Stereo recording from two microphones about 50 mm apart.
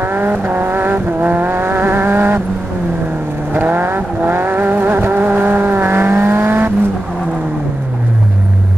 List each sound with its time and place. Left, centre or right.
0.0 s vehicle: right
3.5 s vehicle: right